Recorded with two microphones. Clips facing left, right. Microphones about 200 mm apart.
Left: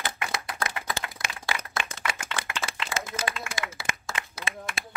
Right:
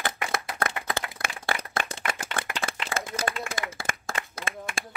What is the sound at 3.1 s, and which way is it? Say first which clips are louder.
Clapping: right 2 dB; 50° right (ahead or behind).